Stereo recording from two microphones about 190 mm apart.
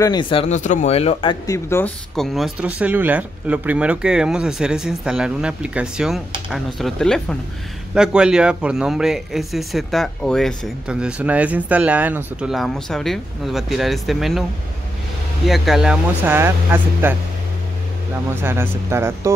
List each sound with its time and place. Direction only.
0.0 s speech: 25° left (ahead or behind)
2.1 s a man's voice: centre (ahead or behind)
15.4 s speech: centre (ahead or behind)
18.3 s speech: 10° right (ahead or behind)